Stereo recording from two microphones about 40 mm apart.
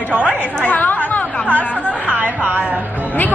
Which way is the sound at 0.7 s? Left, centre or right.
Left.